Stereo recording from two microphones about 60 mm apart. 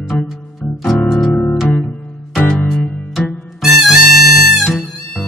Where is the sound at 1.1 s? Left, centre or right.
Centre.